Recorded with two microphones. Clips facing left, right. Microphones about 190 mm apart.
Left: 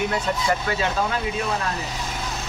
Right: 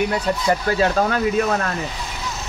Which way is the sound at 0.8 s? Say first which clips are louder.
Right 6 dB; 55° right (ahead or behind).